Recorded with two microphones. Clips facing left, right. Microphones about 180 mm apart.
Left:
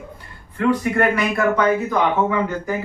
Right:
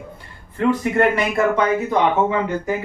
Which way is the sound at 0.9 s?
25° right (ahead or behind).